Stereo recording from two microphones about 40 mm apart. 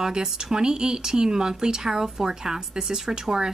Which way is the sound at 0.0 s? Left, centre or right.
Centre.